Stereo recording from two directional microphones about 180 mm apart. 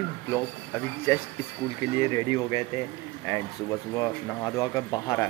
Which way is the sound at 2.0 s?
20° left (ahead or behind).